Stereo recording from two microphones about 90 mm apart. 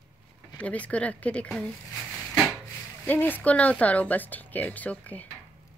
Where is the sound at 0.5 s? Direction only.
15° left (ahead or behind).